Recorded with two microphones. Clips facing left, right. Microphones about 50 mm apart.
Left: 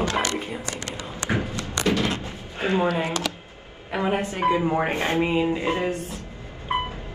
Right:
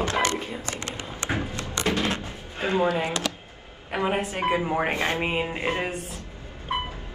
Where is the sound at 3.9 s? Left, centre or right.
Centre.